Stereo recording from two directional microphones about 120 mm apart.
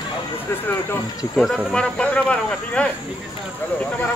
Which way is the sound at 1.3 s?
Centre (ahead or behind).